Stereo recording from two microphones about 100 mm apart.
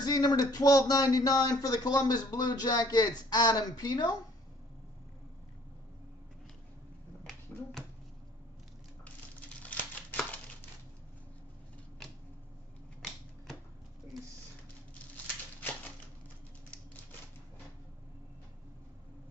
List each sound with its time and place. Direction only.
0.0 s speech: 45° left (ahead or behind)
9.6 s crumpling: 15° left (ahead or behind)